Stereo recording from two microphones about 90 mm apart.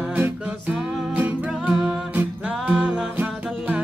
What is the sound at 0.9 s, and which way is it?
Music, 10° right (ahead or behind).